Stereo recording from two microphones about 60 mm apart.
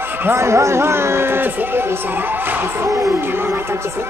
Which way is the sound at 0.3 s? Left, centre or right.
Right.